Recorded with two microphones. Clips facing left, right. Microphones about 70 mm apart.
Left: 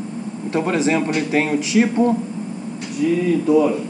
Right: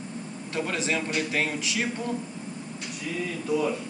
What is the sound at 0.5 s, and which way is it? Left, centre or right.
Speech, left.